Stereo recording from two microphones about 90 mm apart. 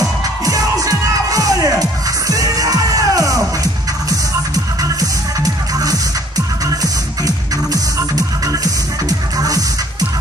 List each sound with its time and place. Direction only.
0.5 s music: 40° right (ahead or behind)